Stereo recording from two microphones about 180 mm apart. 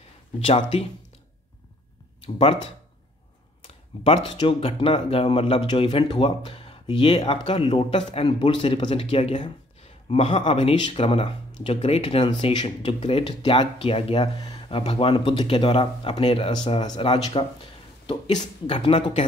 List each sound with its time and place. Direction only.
0.5 s speech: 35° left (ahead or behind)
2.2 s speech: 35° left (ahead or behind)
3.6 s a sound: 35° left (ahead or behind)
4.4 s speech: 30° left (ahead or behind)